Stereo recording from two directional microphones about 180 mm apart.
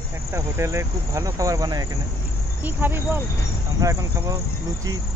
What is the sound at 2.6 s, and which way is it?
Speech, 10° right (ahead or behind).